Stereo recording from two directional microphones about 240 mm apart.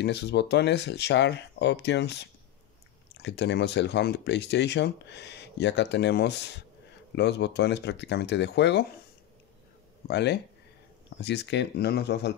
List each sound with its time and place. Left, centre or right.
0.0 s speech: left
10.0 s speech: left